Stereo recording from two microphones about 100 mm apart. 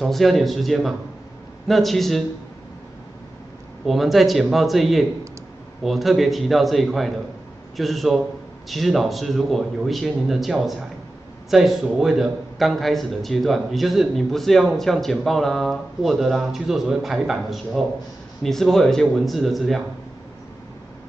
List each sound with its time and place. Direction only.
0.0 s a man's voice: centre (ahead or behind)
3.8 s a man's voice: centre (ahead or behind)